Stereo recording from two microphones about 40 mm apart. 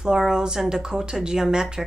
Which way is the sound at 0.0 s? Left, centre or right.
Centre.